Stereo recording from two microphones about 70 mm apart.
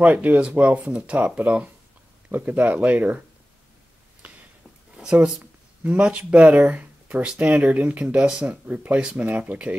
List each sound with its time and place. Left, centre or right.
0.0 s speech: right
4.9 s speech: centre